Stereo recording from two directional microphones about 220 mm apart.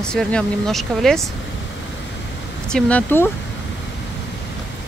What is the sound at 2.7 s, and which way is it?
Speech, 5° left (ahead or behind).